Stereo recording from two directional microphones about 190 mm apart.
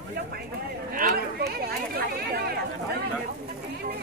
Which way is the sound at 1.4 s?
55° right (ahead or behind).